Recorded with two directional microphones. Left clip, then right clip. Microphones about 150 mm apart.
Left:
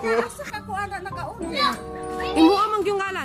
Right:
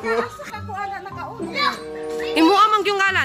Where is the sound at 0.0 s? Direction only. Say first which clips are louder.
Even; centre (ahead or behind).